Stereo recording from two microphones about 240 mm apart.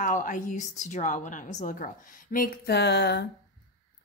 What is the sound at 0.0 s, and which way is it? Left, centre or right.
A woman's voice, left.